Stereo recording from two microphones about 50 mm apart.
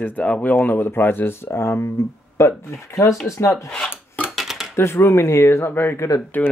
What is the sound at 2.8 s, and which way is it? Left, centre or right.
Speech, left.